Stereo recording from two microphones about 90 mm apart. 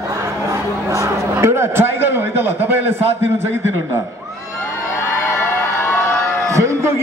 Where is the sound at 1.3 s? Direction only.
30° right (ahead or behind).